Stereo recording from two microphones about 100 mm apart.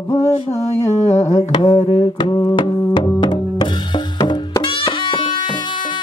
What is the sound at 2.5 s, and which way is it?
Music, 50° left (ahead or behind).